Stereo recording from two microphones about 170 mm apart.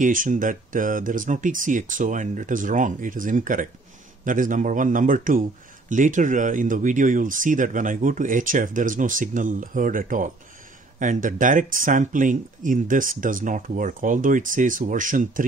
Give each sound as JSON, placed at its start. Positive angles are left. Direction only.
{"t": 0.0, "sound": "speech", "side_deg": -50}